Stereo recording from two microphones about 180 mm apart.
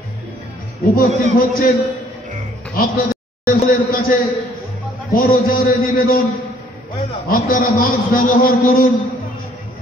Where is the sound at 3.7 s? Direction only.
55° left (ahead or behind).